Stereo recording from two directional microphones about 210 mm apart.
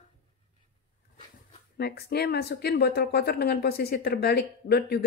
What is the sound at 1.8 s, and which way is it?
Speech, 50° left (ahead or behind).